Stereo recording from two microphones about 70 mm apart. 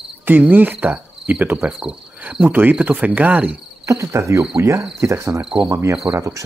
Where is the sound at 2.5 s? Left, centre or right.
Right.